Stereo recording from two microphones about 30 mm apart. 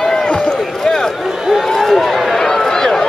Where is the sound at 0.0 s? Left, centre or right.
Centre.